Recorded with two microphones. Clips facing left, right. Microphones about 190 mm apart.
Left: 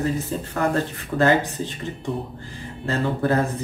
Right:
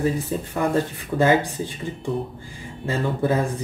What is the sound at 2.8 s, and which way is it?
Speech, 15° right (ahead or behind).